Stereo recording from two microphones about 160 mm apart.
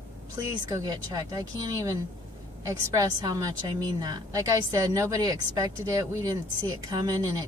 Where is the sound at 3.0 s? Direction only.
20° right (ahead or behind).